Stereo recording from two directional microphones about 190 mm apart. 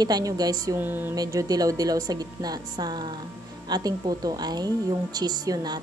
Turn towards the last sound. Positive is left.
turn(degrees=-20)  # may be behind; listen again after turning